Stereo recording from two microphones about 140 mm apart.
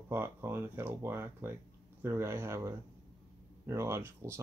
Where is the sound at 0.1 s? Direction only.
15° right (ahead or behind).